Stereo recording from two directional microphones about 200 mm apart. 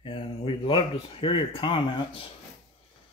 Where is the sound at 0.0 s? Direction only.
25° left (ahead or behind).